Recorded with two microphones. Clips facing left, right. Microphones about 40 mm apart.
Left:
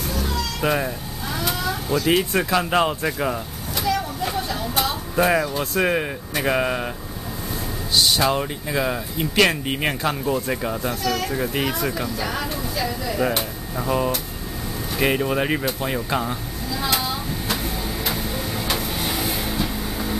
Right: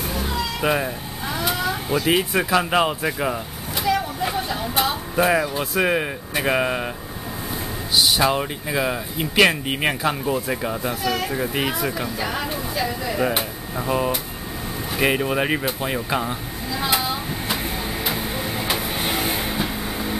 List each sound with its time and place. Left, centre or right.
0.1 s cat: centre
7.9 s speech: centre
18.0 s printer: centre
19.0 s vehicle: right